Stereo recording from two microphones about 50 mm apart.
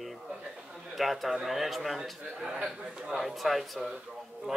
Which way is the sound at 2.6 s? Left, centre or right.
Right.